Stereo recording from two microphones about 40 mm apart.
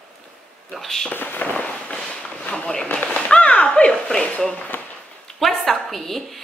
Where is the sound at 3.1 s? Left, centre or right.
Left.